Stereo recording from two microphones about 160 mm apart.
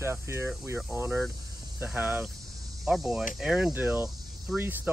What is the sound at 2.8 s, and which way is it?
Speech, centre (ahead or behind).